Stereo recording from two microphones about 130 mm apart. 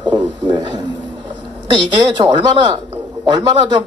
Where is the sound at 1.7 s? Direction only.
35° right (ahead or behind).